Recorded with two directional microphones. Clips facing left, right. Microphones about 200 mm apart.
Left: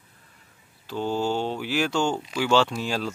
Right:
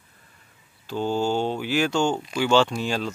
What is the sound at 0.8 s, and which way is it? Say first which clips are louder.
Speech: right 2 dB; centre (ahead or behind).